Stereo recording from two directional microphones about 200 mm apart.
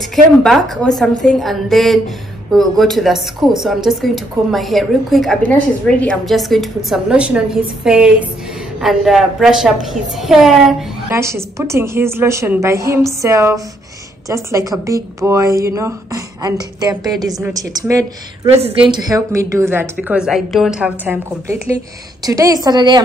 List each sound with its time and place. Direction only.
0.1 s speech: centre (ahead or behind)
11.1 s speech: 15° right (ahead or behind)